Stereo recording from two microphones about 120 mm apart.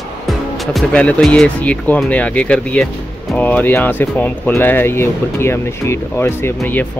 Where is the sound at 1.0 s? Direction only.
5° left (ahead or behind).